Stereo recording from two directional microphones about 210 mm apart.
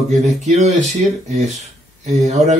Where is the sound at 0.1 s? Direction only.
35° right (ahead or behind).